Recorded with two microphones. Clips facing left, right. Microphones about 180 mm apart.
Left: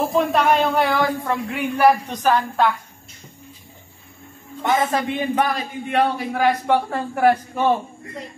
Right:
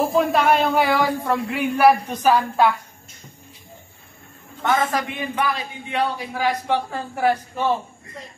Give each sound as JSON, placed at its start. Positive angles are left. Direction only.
{"t": 0.1, "sound": "speech", "side_deg": 0}
{"t": 4.6, "sound": "a man's voice", "side_deg": 20}
{"t": 5.3, "sound": "a man's voice", "side_deg": 45}